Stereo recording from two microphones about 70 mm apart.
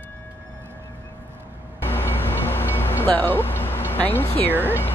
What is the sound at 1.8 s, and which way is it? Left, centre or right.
Train, left.